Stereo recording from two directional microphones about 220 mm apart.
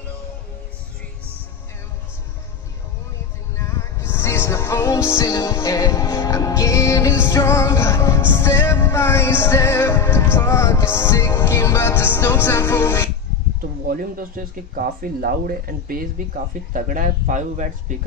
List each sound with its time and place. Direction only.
3.5 s music: 10° left (ahead or behind)
13.8 s speech: 40° right (ahead or behind)